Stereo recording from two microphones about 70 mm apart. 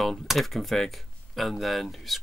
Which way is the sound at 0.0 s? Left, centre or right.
Centre.